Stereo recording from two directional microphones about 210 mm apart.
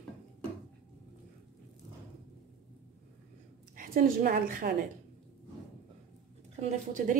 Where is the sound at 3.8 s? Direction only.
45° right (ahead or behind).